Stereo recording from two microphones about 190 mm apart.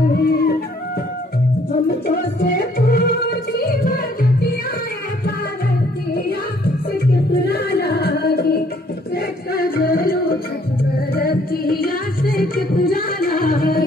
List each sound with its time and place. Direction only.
0.1 s music: 55° left (ahead or behind)
2.0 s music: 60° left (ahead or behind)
6.9 s music: 55° left (ahead or behind)